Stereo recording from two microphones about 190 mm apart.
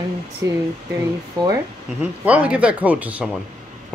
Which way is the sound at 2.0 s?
10° right (ahead or behind).